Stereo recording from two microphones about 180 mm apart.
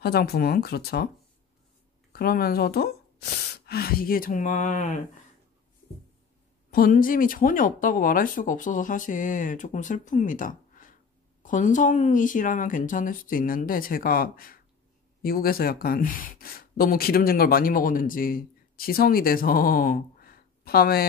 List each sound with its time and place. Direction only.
0.0 s speech: 60° left (ahead or behind)
2.1 s speech: 55° left (ahead or behind)
6.7 s speech: 50° left (ahead or behind)